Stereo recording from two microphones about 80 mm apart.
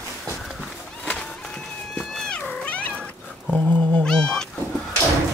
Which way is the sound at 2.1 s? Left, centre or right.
Centre.